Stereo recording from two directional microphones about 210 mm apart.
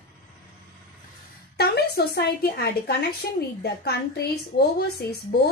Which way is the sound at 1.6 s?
50° left (ahead or behind).